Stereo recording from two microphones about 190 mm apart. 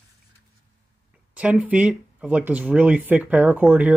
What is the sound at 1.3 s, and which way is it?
Speech, 5° right (ahead or behind).